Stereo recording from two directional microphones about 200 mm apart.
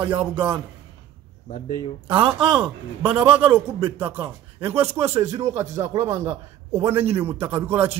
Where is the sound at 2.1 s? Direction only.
25° right (ahead or behind).